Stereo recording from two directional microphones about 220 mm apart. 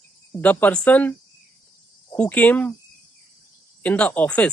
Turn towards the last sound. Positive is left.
turn(degrees=5)  # may be behind; listen again after turning